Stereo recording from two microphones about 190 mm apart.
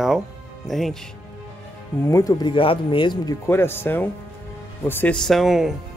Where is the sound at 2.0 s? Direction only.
15° left (ahead or behind).